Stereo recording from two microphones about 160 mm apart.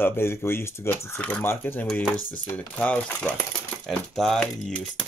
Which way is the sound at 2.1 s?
60° left (ahead or behind).